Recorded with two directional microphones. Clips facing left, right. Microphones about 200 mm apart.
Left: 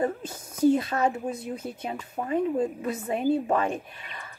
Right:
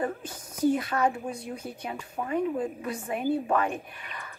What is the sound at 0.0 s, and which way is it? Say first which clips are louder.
A woman's voice: left 3 dB; 25° left (ahead or behind).